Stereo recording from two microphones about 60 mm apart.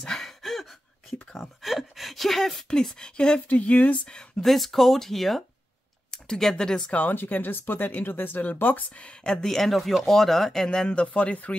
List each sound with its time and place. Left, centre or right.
0.0 s gasp: centre
1.3 s a sound: centre
2.7 s speech: centre
4.4 s speech: centre
6.9 s speech: left
9.0 s speech: centre
10.9 s speech: centre